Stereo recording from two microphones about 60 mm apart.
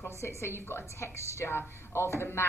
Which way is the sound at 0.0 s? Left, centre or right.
Left.